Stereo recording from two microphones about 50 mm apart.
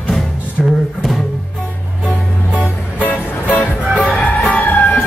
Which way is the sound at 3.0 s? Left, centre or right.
Left.